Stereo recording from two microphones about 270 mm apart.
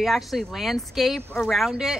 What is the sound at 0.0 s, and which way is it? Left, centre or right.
Speech, centre.